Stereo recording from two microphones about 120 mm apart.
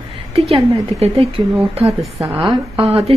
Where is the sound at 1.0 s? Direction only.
60° right (ahead or behind).